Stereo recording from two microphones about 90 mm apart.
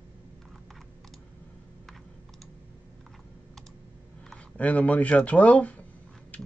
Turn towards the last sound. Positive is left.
turn(degrees=15)  # may be behind; listen again after turning